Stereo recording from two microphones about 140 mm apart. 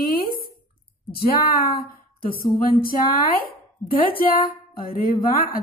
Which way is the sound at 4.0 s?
90° left.